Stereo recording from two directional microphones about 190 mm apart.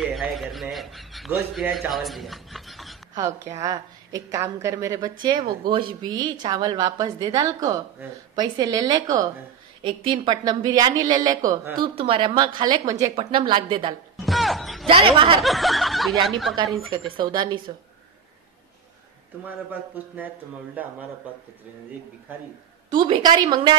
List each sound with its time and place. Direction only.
0.0 s speech: centre (ahead or behind)
3.2 s a woman's voice: 15° right (ahead or behind)
13.1 s a woman's voice: 30° right (ahead or behind)
14.2 s music: centre (ahead or behind)
14.9 s a woman's voice: 25° right (ahead or behind)
15.4 s speech: centre (ahead or behind)
17.2 s a woman's voice: 25° right (ahead or behind)
19.4 s a woman's voice: 10° right (ahead or behind)
22.8 s a woman's voice: 25° right (ahead or behind)